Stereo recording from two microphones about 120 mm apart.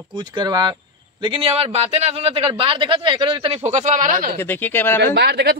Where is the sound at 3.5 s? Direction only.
70° right (ahead or behind).